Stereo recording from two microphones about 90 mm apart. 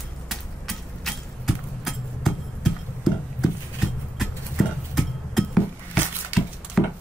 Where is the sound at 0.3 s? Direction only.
Centre (ahead or behind).